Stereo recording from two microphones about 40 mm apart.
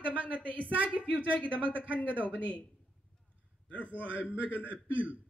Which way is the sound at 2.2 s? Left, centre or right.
Left.